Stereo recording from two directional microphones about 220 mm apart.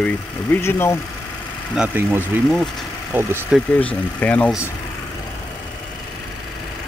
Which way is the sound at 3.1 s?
10° right (ahead or behind).